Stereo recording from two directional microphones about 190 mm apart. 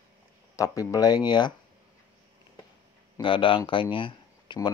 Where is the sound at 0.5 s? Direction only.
15° left (ahead or behind).